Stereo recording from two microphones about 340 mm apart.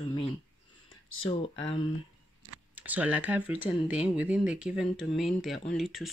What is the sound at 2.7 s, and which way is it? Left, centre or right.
Speech, centre.